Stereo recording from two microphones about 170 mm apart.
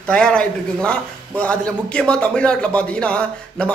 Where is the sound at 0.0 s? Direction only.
5° left (ahead or behind).